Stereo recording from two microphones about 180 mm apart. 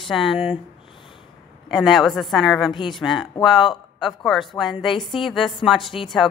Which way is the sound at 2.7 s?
25° left (ahead or behind).